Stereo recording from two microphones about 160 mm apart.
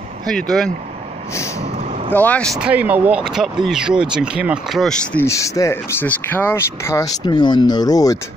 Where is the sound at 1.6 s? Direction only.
45° right (ahead or behind).